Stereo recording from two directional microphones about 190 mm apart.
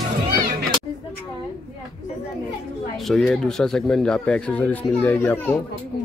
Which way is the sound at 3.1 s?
Centre (ahead or behind).